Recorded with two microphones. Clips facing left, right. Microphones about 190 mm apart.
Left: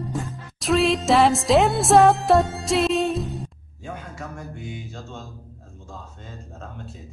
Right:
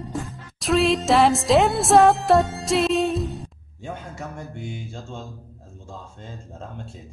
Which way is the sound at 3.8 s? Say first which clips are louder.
Right 1 dB; 25° right (ahead or behind).